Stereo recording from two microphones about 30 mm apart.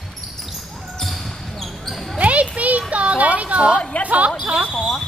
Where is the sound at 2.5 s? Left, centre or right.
Right.